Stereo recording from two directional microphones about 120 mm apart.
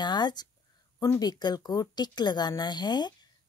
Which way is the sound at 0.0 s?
35° left (ahead or behind).